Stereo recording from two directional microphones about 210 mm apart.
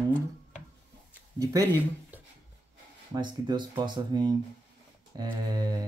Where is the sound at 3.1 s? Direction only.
20° right (ahead or behind).